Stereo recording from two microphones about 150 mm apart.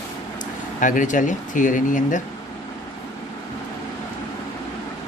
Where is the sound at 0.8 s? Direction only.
60° left (ahead or behind).